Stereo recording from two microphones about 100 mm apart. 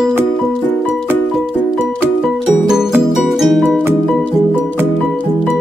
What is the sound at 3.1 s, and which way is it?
Music, centre (ahead or behind).